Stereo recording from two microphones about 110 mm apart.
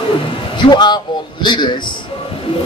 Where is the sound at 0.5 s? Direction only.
40° left (ahead or behind).